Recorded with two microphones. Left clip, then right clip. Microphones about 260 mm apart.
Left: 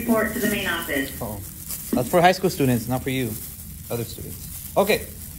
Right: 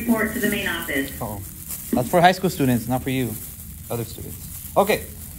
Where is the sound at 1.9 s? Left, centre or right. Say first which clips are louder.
Right 1 dB; right.